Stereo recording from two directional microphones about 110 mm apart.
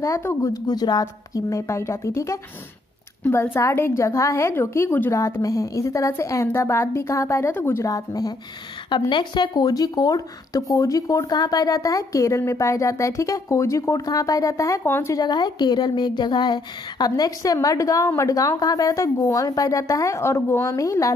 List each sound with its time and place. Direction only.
0.0 s a woman's voice: 25° left (ahead or behind)
15.2 s speech: 40° left (ahead or behind)